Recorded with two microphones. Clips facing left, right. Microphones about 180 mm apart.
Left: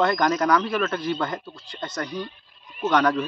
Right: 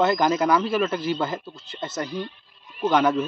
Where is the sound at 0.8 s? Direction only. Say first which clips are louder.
Right 1 dB; 25° right (ahead or behind).